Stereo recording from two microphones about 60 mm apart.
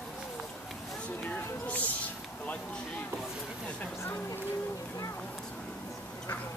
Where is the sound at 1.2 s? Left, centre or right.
Left.